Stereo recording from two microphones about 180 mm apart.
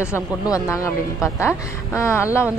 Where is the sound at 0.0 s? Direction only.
15° left (ahead or behind).